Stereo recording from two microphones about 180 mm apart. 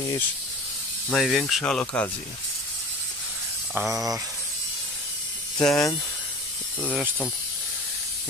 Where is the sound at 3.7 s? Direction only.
20° right (ahead or behind).